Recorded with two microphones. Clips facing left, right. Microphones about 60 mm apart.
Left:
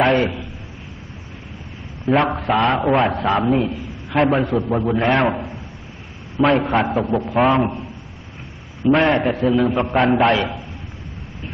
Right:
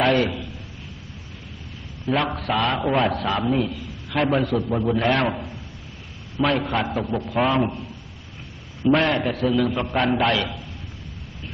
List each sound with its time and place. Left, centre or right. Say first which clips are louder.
0.0 s a sound: left 3 dB; left
2.1 s a man's voice: left 5 dB; left
6.9 s a man's voice: left 6 dB; centre
7.2 s a man's voice: left 4 dB; centre
8.8 s a man's voice: left 4 dB; centre